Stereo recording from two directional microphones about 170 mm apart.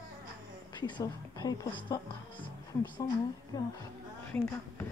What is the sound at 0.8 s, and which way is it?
A woman's voice, 25° left (ahead or behind).